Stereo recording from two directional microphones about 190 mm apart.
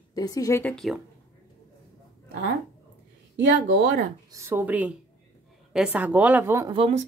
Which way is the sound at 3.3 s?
50° right (ahead or behind).